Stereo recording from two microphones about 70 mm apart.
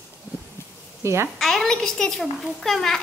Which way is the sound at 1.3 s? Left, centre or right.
Centre.